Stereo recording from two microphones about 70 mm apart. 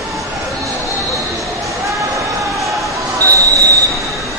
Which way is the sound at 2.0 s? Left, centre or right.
Right.